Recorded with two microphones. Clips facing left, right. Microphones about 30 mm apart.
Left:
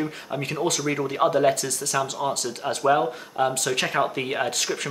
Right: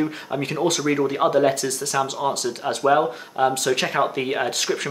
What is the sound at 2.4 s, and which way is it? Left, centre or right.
Speech, centre.